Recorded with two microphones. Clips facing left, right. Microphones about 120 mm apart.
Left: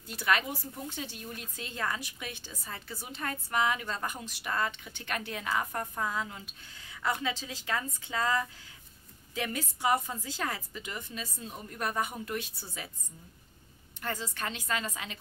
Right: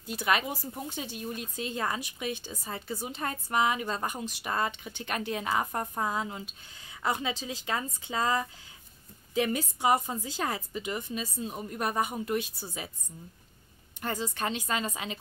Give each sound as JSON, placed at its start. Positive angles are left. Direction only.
{"t": 0.0, "sound": "a woman's voice", "side_deg": -15}
{"t": 14.0, "sound": "a woman's voice", "side_deg": -20}